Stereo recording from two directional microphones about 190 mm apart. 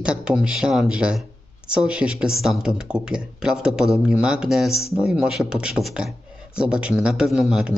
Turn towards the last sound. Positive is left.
turn(degrees=0)  # may be behind; listen again after turning